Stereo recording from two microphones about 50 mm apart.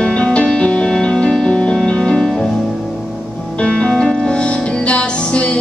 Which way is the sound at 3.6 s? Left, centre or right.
Centre.